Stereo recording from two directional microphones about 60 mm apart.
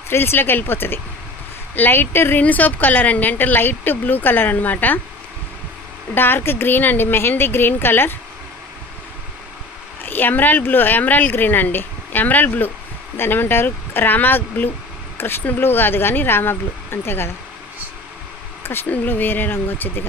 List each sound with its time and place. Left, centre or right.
0.1 s speech: left
2.4 s speech: left
6.1 s speech: left
10.0 s speech: left
18.6 s a sound: left
18.9 s speech: left